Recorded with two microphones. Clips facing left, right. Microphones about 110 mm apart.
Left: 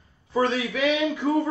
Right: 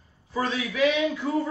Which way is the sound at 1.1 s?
30° left (ahead or behind).